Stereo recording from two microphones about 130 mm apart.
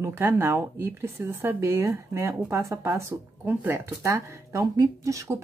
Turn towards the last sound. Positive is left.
turn(degrees=-25)  # may be behind; listen again after turning